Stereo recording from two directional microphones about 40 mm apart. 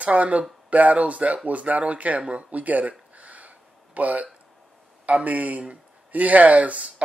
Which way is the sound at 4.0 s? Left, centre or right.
Right.